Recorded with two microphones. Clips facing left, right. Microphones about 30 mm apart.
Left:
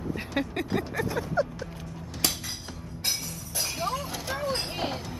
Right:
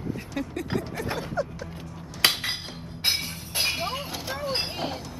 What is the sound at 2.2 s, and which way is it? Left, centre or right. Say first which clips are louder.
Chink: right 8 dB; right.